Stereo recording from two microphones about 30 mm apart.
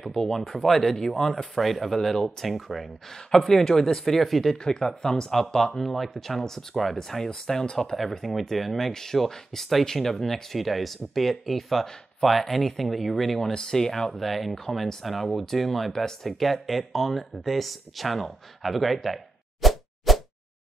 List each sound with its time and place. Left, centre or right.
0.4 s speech: centre
2.0 s speech: centre
2.4 s speech: centre
3.1 s speech: left
3.3 s speech: centre
4.6 s speech: left; by 13.4 s centre
13.4 s speech: centre
14.1 s speech: centre
15.9 s speech: centre
18.6 s plop: centre